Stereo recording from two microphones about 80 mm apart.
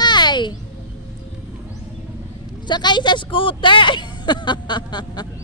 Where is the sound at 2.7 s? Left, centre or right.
Left.